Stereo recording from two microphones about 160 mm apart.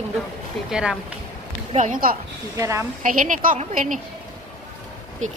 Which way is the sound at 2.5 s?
20° right (ahead or behind).